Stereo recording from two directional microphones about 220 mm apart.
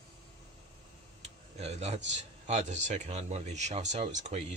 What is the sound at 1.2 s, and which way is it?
Speech, 30° right (ahead or behind).